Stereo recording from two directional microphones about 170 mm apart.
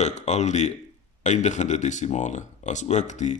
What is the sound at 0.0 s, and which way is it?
Speech, 40° left (ahead or behind).